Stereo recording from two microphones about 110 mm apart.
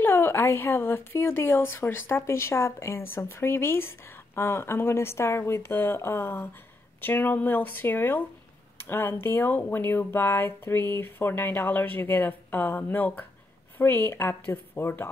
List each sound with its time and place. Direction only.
0.0 s speech: 20° left (ahead or behind)